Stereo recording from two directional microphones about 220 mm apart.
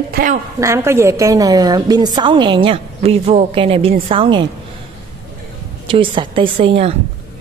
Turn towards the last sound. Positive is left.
turn(degrees=-25)  # may be behind; listen again after turning